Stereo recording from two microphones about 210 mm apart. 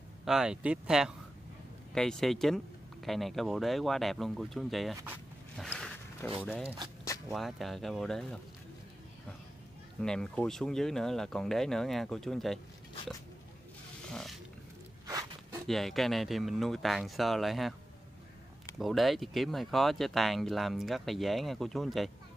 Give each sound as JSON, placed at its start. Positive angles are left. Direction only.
{"t": 0.2, "sound": "speech", "side_deg": -5}
{"t": 5.6, "sound": "a sound", "side_deg": 0}
{"t": 7.2, "sound": "speech", "side_deg": 0}
{"t": 10.0, "sound": "speech", "side_deg": 5}
{"t": 14.1, "sound": "zipper", "side_deg": 0}
{"t": 15.0, "sound": "a sound", "side_deg": -15}
{"t": 15.6, "sound": "speech", "side_deg": 0}
{"t": 18.8, "sound": "speech", "side_deg": 0}